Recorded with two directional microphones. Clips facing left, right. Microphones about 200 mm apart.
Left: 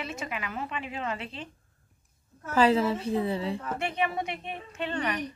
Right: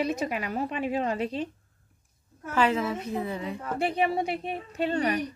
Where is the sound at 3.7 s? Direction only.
35° right (ahead or behind).